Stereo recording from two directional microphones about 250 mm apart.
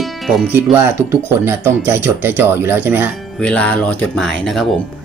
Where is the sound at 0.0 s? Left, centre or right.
Centre.